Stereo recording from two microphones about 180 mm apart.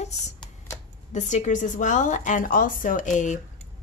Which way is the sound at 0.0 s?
40° left (ahead or behind).